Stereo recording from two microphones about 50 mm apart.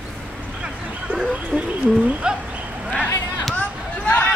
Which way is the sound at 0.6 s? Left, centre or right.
Centre.